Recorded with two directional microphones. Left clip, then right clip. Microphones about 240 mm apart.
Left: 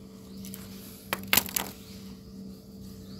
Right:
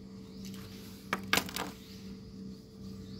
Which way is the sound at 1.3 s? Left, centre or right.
Left.